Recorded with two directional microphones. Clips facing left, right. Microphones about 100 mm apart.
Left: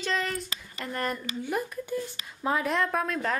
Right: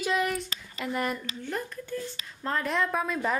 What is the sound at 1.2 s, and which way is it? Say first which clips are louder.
Speech: left 3 dB; 10° left (ahead or behind).